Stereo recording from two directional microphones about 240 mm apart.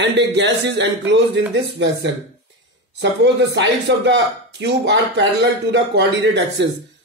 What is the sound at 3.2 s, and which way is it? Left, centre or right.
Speech, right.